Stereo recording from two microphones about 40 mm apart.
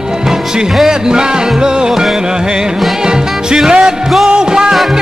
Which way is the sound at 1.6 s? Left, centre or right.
Centre.